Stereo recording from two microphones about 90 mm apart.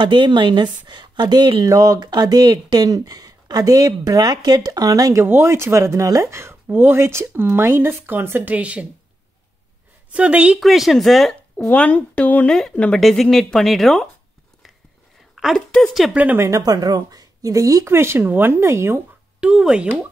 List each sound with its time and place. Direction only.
0.0 s a woman's voice: 60° right (ahead or behind)
1.6 s speech: 45° right (ahead or behind)
5.2 s speech: 25° right (ahead or behind)
10.1 s speech: 15° right (ahead or behind)
10.6 s speech: centre (ahead or behind)
11.5 s speech: 15° left (ahead or behind)
15.3 s a sound: centre (ahead or behind)
15.7 s speech: centre (ahead or behind)
16.3 s speech: 35° right (ahead or behind)
19.4 s speech: 10° right (ahead or behind)